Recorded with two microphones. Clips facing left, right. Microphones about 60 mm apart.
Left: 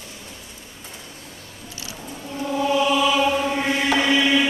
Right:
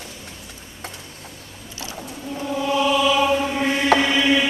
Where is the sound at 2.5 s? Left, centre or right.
Centre.